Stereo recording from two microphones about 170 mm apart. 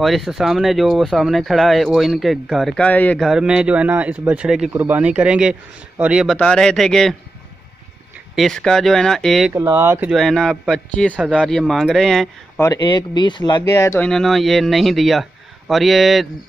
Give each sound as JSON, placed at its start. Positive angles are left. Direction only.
{"t": 0.0, "sound": "speech", "side_deg": 0}
{"t": 6.3, "sound": "speech", "side_deg": 5}
{"t": 8.4, "sound": "speech", "side_deg": 5}
{"t": 9.5, "sound": "speech", "side_deg": -15}
{"t": 10.1, "sound": "speech", "side_deg": 0}
{"t": 12.6, "sound": "speech", "side_deg": 25}
{"t": 13.9, "sound": "speech", "side_deg": 5}